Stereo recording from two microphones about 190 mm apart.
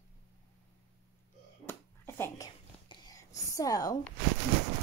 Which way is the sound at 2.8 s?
20° left (ahead or behind).